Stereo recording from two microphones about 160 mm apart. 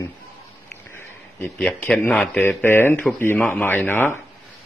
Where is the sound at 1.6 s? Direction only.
5° left (ahead or behind).